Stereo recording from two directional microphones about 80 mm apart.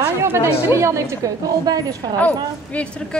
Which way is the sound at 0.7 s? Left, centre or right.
Right.